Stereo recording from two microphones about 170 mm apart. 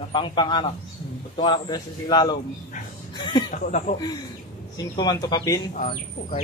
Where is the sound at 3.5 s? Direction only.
45° left (ahead or behind).